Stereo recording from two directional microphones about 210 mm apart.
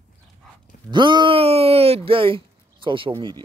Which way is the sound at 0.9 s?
20° right (ahead or behind).